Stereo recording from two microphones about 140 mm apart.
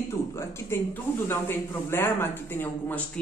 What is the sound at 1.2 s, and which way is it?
Speech, 15° left (ahead or behind).